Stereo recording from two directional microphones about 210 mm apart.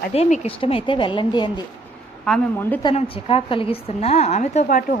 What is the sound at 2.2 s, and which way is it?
Speech, 5° left (ahead or behind).